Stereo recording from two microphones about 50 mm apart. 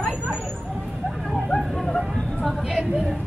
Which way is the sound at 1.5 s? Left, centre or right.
Centre.